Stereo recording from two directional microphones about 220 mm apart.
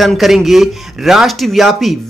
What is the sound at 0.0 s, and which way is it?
Speech, centre (ahead or behind).